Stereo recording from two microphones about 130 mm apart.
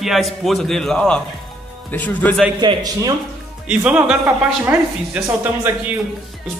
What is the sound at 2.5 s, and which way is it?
Speech, 30° right (ahead or behind).